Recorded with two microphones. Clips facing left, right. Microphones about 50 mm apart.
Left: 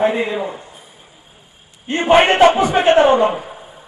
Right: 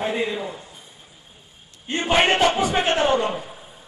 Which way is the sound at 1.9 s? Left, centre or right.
Centre.